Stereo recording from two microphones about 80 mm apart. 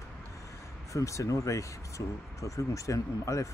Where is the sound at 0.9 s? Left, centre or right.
Left.